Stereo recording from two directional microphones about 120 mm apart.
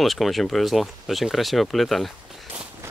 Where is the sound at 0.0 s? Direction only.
Centre (ahead or behind).